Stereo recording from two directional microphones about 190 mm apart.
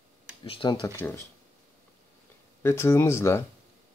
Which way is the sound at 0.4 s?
25° left (ahead or behind).